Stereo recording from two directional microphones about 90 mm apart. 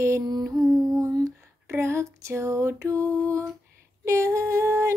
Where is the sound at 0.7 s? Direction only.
40° right (ahead or behind).